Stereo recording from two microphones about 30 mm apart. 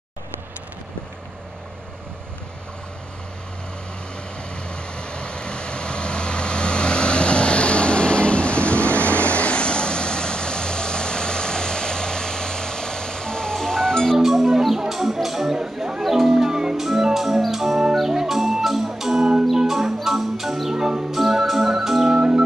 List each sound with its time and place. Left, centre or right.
4.6 s vehicle: left
13.7 s music: left
14.1 s music: centre
15.5 s a sound: right
16.0 s music: centre
16.7 s music: centre
20.7 s music: right
21.1 s organ: centre
22.1 s organ: right